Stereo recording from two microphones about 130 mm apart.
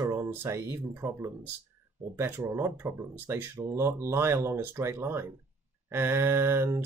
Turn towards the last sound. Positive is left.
turn(degrees=-20)  # may be behind; listen again after turning